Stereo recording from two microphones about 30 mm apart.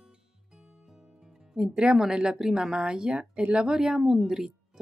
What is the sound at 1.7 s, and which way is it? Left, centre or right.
Speech, right.